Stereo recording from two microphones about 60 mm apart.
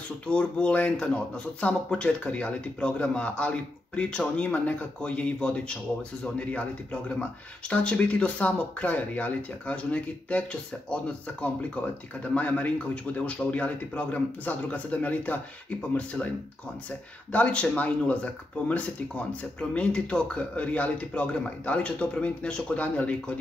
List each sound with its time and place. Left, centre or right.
0.3 s speech: centre
17.3 s speech: left